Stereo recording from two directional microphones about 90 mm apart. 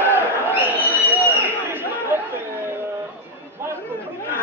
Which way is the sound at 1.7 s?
25° right (ahead or behind).